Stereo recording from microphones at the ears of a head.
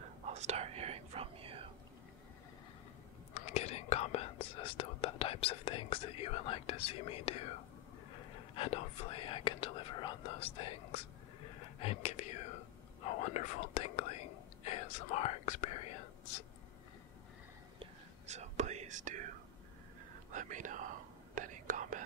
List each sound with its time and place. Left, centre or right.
0.0 s whispering: right
3.3 s speech: left
18.2 s whispering: right